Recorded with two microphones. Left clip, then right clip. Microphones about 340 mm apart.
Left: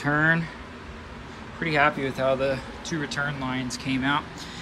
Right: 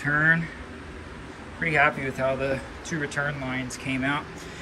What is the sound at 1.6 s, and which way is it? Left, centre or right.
Speech, centre.